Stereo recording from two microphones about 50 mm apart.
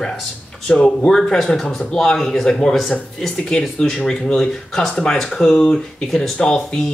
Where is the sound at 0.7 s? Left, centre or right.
Centre.